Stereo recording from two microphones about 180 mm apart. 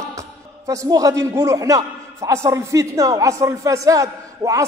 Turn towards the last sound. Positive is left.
turn(degrees=-20)  # may be behind; listen again after turning